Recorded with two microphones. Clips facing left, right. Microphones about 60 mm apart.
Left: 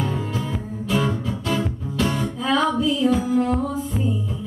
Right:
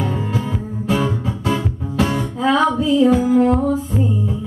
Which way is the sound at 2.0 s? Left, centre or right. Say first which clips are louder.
Right 4 dB; right.